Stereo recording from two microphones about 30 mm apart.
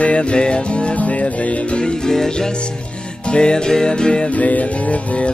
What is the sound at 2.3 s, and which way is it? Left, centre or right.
Music, left.